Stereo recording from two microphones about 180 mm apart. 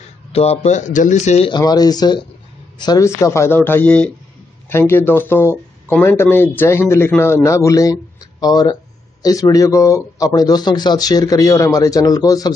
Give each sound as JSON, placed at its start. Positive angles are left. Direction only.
{"t": 0.3, "sound": "speech", "side_deg": 35}
{"t": 1.5, "sound": "a man's voice", "side_deg": 20}